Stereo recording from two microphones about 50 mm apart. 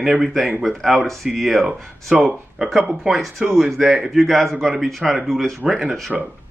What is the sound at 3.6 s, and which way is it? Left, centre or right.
Speech, centre.